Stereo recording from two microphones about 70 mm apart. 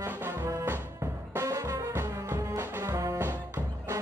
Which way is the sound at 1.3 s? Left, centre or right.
Right.